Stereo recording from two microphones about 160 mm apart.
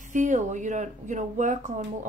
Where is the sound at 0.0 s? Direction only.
50° right (ahead or behind).